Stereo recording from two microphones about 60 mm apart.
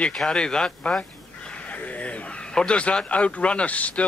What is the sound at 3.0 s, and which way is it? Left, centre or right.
Speech, left.